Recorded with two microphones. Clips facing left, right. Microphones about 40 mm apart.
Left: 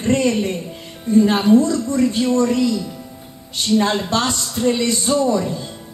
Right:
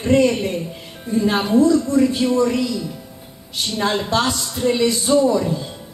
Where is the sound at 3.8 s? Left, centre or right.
Centre.